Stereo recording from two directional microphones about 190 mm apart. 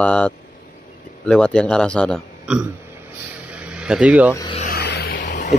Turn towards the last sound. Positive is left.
turn(degrees=40)  # may be behind; listen again after turning